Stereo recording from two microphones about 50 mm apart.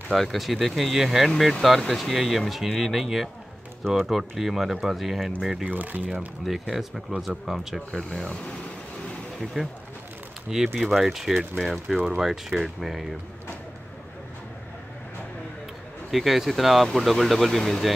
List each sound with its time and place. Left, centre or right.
0.1 s speech: centre
5.7 s speech: right
6.4 s speech: centre
7.9 s speech: centre
9.4 s speech: centre
10.7 s speech: centre
16.1 s speech: centre